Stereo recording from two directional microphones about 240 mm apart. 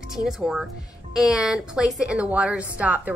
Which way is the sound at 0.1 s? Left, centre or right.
Centre.